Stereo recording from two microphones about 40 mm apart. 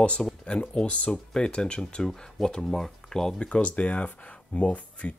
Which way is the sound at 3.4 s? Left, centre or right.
Left.